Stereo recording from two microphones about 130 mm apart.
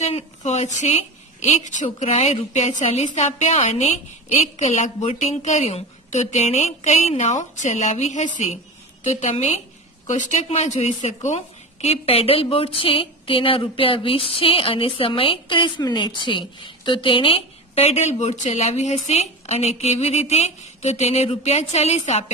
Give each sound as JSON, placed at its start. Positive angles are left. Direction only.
{"t": 0.0, "sound": "a woman's voice", "side_deg": 60}